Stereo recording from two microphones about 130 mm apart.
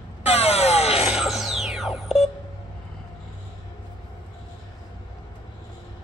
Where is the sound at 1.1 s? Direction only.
5° right (ahead or behind).